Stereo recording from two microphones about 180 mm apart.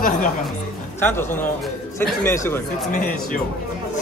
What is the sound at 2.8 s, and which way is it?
Speech, 50° left (ahead or behind).